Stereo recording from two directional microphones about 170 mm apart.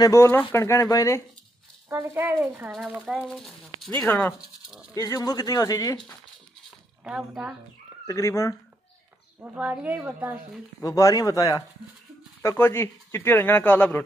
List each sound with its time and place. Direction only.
0.0 s speech: 15° left (ahead or behind)
1.9 s a woman's voice: 15° right (ahead or behind)
2.7 s speech: centre (ahead or behind)
4.0 s speech: 10° left (ahead or behind)
7.1 s speech: 5° right (ahead or behind)
8.1 s speech: 15° left (ahead or behind)
9.4 s a woman's voice: 10° right (ahead or behind)
10.8 s speech: 20° left (ahead or behind)